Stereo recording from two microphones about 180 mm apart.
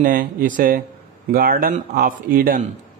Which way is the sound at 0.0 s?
50° right (ahead or behind).